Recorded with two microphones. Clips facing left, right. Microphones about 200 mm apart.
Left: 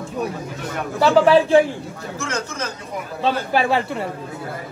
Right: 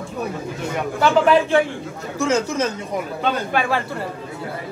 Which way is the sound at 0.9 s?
35° left (ahead or behind).